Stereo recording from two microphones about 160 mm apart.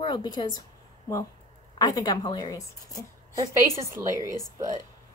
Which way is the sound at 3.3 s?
20° right (ahead or behind).